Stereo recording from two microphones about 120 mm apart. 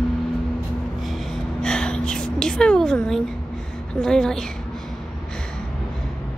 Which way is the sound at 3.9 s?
5° left (ahead or behind).